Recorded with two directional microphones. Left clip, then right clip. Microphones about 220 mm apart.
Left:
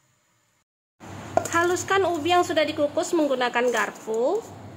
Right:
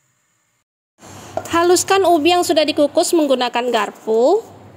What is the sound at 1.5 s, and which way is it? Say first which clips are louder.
A woman's voice: right 11 dB; 30° right (ahead or behind).